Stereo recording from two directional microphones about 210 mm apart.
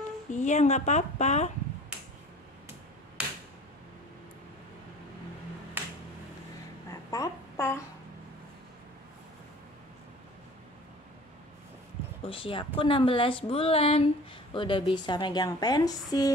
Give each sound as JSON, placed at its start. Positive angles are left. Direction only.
{"t": 0.3, "sound": "a woman's voice", "side_deg": 35}
{"t": 6.9, "sound": "babbling", "side_deg": 15}
{"t": 12.3, "sound": "speech", "side_deg": 25}